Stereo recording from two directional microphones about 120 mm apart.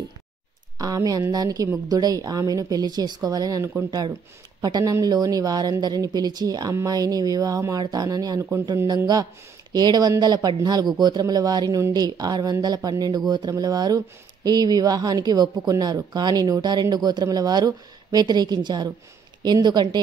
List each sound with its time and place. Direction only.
0.7 s speech: 30° right (ahead or behind)